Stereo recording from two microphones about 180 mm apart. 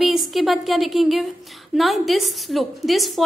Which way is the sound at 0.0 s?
Centre (ahead or behind).